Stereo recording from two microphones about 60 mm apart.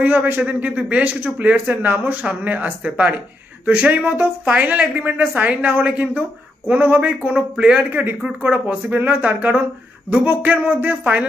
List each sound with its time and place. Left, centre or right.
0.0 s speech: right
7.9 s speech: right